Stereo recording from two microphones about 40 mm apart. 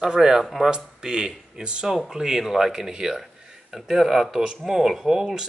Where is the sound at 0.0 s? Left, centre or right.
Centre.